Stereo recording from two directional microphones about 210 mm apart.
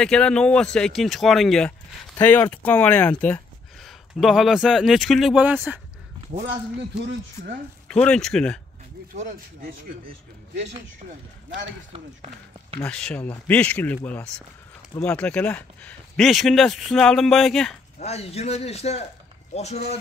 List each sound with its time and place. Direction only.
0.0 s speech: 5° left (ahead or behind)
7.9 s speech: 5° left (ahead or behind)
9.1 s speech: 40° right (ahead or behind)
12.8 s speech: 5° left (ahead or behind)
17.9 s a man's voice: 30° left (ahead or behind)